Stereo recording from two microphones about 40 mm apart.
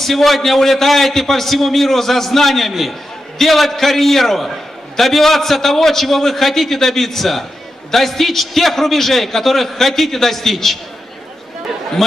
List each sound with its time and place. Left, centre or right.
0.0 s a man's voice: centre
12.0 s a man's voice: centre